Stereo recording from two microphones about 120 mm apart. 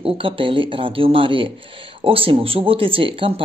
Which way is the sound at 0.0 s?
45° right (ahead or behind).